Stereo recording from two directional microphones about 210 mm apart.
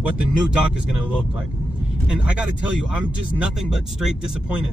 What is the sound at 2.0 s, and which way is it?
Speech, 5° right (ahead or behind).